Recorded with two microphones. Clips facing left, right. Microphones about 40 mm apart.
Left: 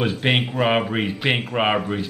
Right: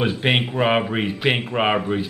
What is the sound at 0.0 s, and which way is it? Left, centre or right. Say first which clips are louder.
Speech: right 1 dB; centre.